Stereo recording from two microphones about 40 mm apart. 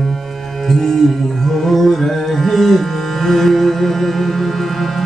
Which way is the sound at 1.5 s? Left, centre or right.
Centre.